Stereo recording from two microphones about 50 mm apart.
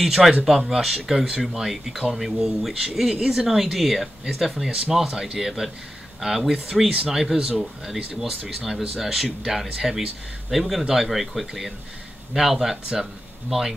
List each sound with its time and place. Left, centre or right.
0.0 s speech: centre
6.9 s speech: right
7.2 s speech: centre